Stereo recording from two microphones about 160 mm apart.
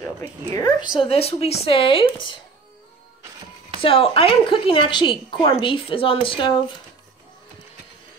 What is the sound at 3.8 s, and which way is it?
A woman's voice, 35° left (ahead or behind).